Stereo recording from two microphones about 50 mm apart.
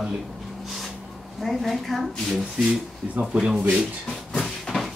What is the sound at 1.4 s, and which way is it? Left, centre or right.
Speech, centre.